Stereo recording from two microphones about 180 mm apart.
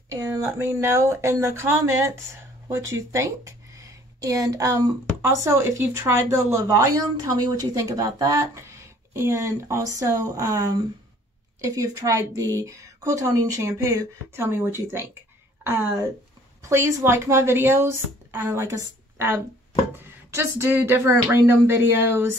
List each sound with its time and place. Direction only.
0.1 s speech: 15° right (ahead or behind)